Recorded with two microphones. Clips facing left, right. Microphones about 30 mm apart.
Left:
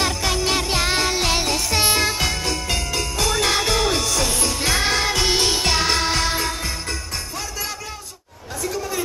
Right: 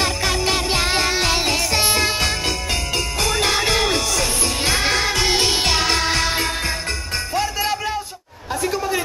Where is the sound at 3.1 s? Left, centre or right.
Centre.